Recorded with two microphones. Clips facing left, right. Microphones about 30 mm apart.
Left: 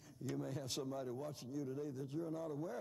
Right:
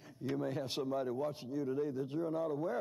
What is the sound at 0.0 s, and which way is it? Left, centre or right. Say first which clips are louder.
A man's voice: right 7 dB; right.